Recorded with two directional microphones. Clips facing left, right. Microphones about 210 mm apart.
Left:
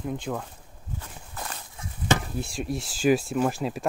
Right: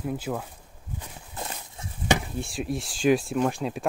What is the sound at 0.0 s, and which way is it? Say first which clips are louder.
Speech: right 1 dB; 5° right (ahead or behind).